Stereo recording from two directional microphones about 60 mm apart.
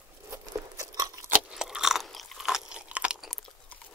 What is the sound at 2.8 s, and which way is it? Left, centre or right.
Chewing, right.